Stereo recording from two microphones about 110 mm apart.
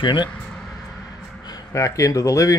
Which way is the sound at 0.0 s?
45° left (ahead or behind).